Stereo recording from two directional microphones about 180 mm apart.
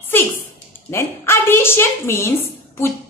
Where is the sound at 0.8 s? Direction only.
15° left (ahead or behind).